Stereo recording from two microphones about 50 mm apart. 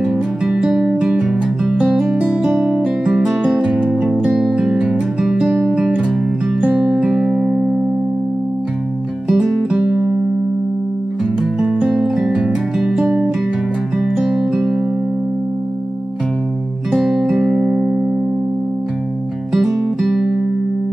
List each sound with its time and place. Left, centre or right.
0.0 s music: centre
5.5 s music: centre
5.8 s music: centre
9.3 s music: centre
11.6 s music: centre
14.1 s music: centre
16.9 s music: centre
19.5 s music: centre